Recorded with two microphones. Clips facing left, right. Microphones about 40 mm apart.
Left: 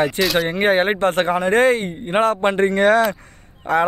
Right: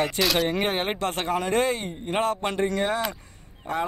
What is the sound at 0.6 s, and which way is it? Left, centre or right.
Speech, left.